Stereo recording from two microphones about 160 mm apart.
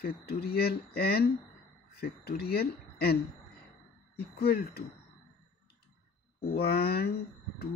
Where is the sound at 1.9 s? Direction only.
90° left.